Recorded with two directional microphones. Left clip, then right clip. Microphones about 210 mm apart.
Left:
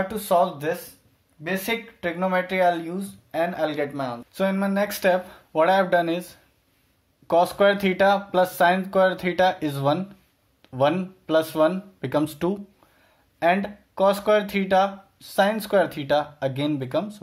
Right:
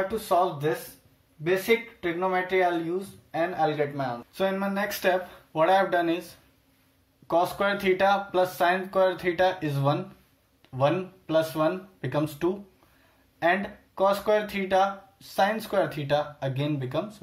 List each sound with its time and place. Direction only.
0.1 s speech: 55° left (ahead or behind)